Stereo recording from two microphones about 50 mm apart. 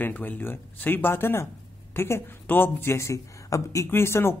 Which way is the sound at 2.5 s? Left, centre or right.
Left.